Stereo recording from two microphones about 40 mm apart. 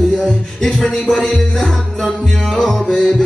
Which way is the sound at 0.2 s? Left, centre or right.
Centre.